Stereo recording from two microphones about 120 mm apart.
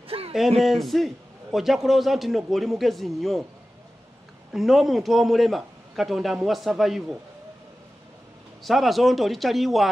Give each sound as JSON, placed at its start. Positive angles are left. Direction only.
{"t": 0.1, "sound": "a sound", "side_deg": -50}
{"t": 0.6, "sound": "a man's voice", "side_deg": 0}
{"t": 4.5, "sound": "a man's voice", "side_deg": 0}
{"t": 8.6, "sound": "a man's voice", "side_deg": 0}